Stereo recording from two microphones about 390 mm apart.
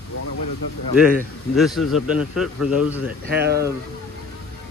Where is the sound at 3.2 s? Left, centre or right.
Right.